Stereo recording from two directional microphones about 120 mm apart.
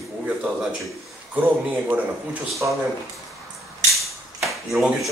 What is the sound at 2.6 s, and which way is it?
Speech, 20° right (ahead or behind).